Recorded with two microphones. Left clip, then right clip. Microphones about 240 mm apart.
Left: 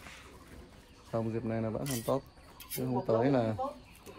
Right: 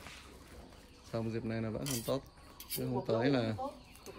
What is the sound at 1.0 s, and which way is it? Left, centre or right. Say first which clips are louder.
Speech: left 4 dB; centre.